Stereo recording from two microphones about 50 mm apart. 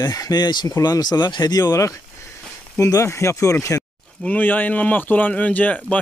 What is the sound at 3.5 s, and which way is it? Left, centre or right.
Speech, left.